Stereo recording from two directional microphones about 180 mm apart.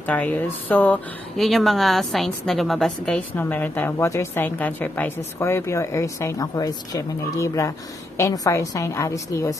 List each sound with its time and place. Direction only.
0.0 s speech: 10° left (ahead or behind)